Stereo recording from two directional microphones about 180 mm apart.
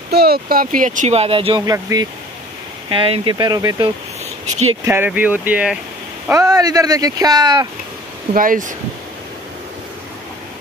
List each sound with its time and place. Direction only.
0.1 s speech: 60° right (ahead or behind); by 1.8 s 30° right (ahead or behind)
2.9 s speech: 30° right (ahead or behind); by 5.8 s 10° right (ahead or behind)
6.2 s speech: 20° right (ahead or behind)
8.3 s speech: 45° right (ahead or behind)